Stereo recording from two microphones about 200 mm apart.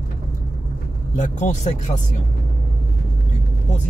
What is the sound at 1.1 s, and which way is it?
Speech, 35° left (ahead or behind).